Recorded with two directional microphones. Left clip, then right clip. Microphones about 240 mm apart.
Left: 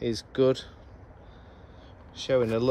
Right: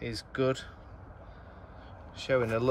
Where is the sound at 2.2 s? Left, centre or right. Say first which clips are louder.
Left 3 dB; centre.